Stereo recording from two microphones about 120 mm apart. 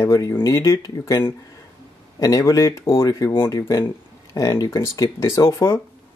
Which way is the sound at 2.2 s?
30° left (ahead or behind).